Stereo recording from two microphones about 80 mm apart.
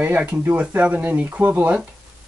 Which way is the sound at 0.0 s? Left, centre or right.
Centre.